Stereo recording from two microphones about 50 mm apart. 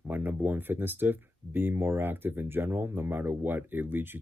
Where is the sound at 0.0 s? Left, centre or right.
Right.